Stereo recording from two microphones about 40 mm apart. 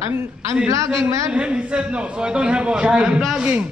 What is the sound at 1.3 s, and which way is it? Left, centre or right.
A man's voice, right.